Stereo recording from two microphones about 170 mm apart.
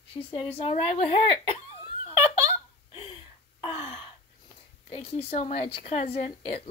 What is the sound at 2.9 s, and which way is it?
Gasp, 30° left (ahead or behind).